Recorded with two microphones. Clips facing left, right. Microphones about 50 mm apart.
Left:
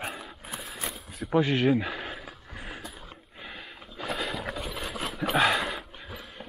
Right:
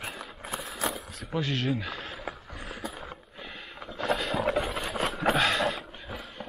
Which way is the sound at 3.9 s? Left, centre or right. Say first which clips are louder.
Right 4 dB; centre.